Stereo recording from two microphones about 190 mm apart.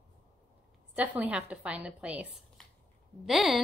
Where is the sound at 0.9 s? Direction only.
10° right (ahead or behind).